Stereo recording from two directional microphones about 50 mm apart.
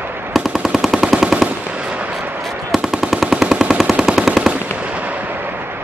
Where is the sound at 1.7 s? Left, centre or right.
Right.